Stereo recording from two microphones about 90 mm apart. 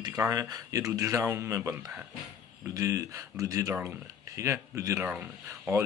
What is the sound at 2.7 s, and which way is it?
Speech, 40° right (ahead or behind).